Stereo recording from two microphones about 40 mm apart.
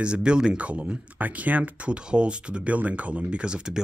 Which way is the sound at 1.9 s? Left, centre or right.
Right.